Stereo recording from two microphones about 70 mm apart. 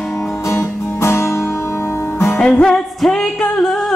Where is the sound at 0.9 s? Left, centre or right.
Left.